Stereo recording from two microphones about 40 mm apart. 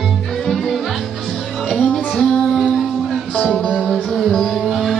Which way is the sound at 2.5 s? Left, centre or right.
Centre.